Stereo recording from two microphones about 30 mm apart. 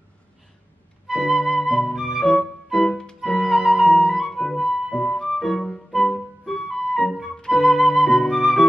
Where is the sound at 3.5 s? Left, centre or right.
Centre.